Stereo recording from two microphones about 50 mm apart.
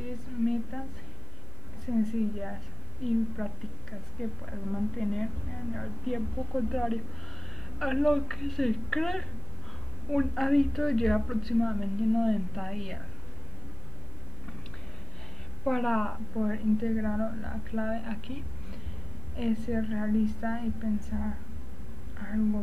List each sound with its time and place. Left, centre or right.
0.5 s a woman's voice: centre
1.9 s a woman's voice: centre
3.4 s a woman's voice: left
4.2 s a woman's voice: centre
15.6 s a woman's voice: centre